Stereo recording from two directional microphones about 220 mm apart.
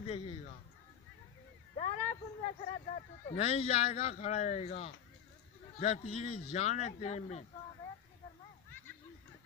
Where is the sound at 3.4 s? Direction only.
25° left (ahead or behind).